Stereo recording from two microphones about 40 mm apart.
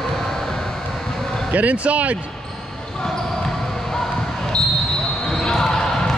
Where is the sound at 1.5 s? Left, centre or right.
Right.